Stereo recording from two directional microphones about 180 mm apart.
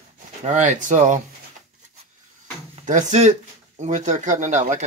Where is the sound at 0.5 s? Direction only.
45° right (ahead or behind).